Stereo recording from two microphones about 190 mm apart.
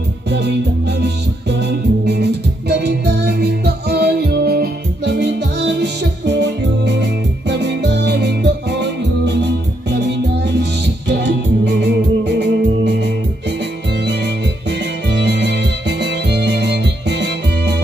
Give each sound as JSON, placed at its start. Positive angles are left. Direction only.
{"t": 0.3, "sound": "music", "side_deg": -60}